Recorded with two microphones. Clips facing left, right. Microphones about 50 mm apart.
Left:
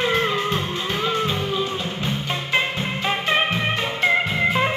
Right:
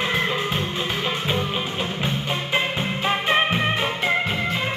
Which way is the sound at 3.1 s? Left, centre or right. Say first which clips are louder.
Right 1 dB; centre.